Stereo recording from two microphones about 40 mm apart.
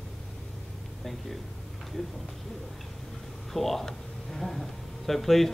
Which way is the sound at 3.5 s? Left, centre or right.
Centre.